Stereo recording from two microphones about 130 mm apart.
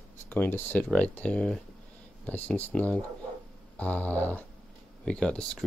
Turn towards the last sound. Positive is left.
turn(degrees=5)  # may be behind; listen again after turning